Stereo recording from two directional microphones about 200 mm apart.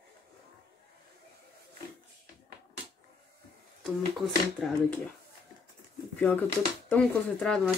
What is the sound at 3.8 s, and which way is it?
Speech, centre (ahead or behind).